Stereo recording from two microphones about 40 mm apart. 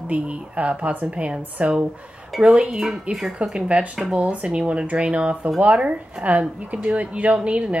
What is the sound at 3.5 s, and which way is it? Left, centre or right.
A woman's voice, right.